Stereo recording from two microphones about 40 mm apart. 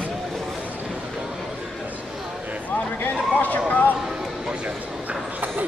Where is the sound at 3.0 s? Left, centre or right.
Left.